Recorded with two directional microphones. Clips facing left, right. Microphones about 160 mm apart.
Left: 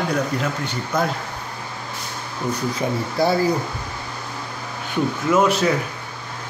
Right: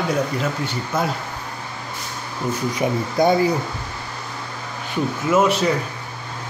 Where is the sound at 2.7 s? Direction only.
20° right (ahead or behind).